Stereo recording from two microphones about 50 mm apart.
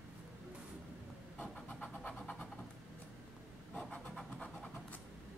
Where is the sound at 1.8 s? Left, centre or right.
Left.